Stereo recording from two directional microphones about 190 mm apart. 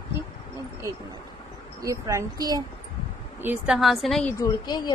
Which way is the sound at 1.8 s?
15° right (ahead or behind).